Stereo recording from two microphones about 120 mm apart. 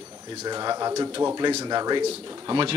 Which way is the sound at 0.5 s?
35° right (ahead or behind).